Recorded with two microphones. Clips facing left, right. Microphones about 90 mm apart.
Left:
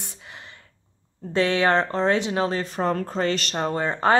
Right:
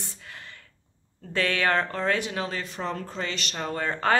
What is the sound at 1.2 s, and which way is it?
Speech, 25° left (ahead or behind).